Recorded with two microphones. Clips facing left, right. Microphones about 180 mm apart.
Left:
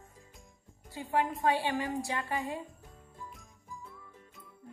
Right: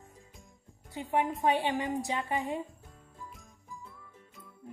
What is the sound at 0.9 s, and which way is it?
Speech, 20° right (ahead or behind).